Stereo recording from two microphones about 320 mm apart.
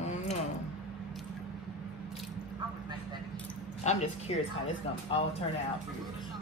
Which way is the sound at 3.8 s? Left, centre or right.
Left.